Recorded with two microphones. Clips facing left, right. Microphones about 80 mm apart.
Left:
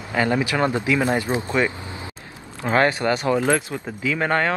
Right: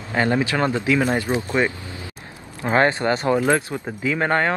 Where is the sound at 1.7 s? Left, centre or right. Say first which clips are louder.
Left 1 dB; left.